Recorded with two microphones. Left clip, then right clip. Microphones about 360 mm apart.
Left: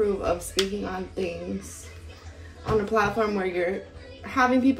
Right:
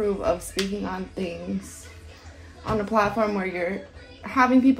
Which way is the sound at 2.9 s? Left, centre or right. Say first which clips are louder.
Right 4 dB; centre.